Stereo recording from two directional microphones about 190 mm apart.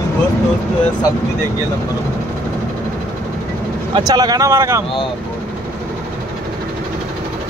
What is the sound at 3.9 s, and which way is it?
Speech, 20° right (ahead or behind).